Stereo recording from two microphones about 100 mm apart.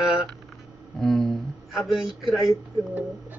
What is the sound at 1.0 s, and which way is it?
Speech, 5° left (ahead or behind).